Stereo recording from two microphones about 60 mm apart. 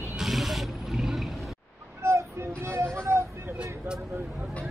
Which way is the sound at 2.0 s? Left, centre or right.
Right.